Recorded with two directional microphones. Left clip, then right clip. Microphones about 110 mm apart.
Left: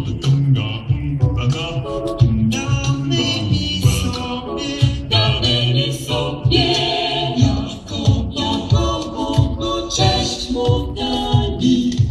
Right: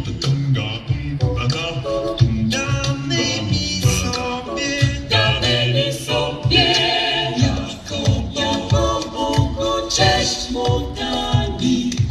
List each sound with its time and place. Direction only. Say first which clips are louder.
3.1 s music: left 2 dB; 20° right (ahead or behind)
4.6 s a capella: right 2 dB; 15° right (ahead or behind)
8.0 s music: even; 15° right (ahead or behind)